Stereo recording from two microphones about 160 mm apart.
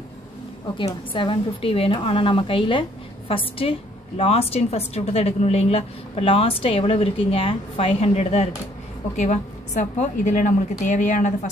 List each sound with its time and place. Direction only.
0.7 s a woman's voice: 30° left (ahead or behind); by 11.5 s 50° left (ahead or behind)